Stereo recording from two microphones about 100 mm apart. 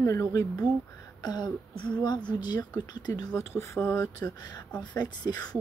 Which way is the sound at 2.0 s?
45° left (ahead or behind).